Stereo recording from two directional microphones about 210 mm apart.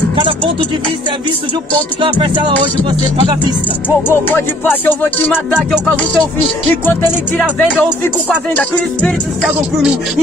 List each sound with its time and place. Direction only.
2.0 s music: 25° right (ahead or behind)
4.1 s music: 10° left (ahead or behind)
8.5 s music: centre (ahead or behind)